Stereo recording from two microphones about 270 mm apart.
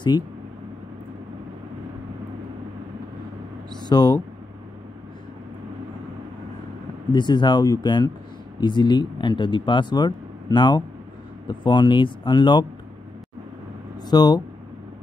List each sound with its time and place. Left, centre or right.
3.8 s speech: centre
7.1 s speech: centre
14.0 s speech: centre